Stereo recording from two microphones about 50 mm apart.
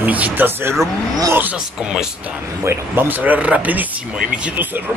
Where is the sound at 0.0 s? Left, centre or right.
Right.